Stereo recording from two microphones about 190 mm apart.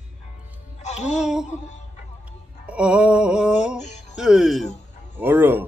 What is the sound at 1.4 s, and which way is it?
Music, 40° left (ahead or behind).